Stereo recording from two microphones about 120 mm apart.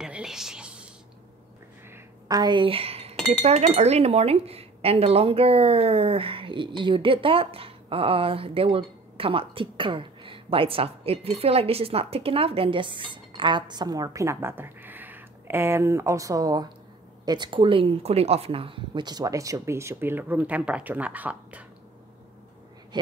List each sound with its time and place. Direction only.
0.0 s whispering: 5° right (ahead or behind)
2.2 s speech: 35° right (ahead or behind); by 21.6 s 10° right (ahead or behind)